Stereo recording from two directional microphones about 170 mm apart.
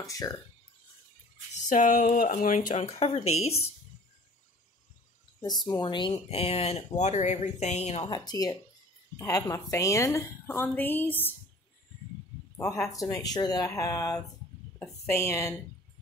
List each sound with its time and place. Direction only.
0.0 s speech: 20° left (ahead or behind)
1.7 s speech: 50° left (ahead or behind)
5.4 s speech: 25° left (ahead or behind); by 8.1 s 40° left (ahead or behind)
8.1 s a woman's voice: 25° left (ahead or behind)
12.5 s a woman's voice: 20° left (ahead or behind)